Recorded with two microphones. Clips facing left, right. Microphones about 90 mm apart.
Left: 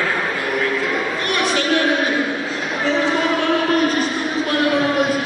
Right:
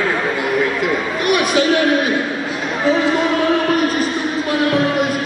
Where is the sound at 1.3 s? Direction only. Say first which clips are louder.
Right 7 dB; 10° right (ahead or behind).